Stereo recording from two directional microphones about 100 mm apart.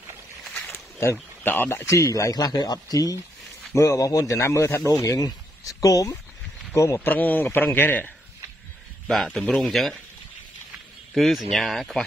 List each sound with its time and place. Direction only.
0.5 s a sound: 20° left (ahead or behind)
1.1 s a man's voice: 20° left (ahead or behind)
7.1 s a man's voice: 15° left (ahead or behind)
9.0 s a man's voice: 5° left (ahead or behind)
11.1 s speech: centre (ahead or behind)